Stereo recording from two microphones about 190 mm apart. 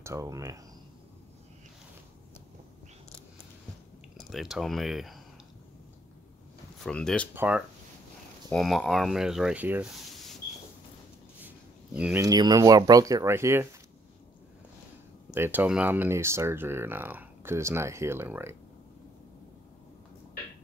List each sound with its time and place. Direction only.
0.0 s speech: 15° right (ahead or behind)
4.2 s speech: centre (ahead or behind)
6.8 s speech: 5° left (ahead or behind)
7.3 s speech: 5° right (ahead or behind)
11.4 s a sound: 10° right (ahead or behind)
12.2 s speech: 20° right (ahead or behind)
15.3 s speech: 10° right (ahead or behind)